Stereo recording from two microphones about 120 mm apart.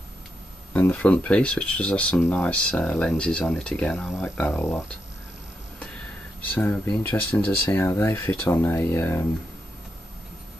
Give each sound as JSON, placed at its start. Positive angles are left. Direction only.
{"t": 0.7, "sound": "speech", "side_deg": 15}
{"t": 6.5, "sound": "speech", "side_deg": 15}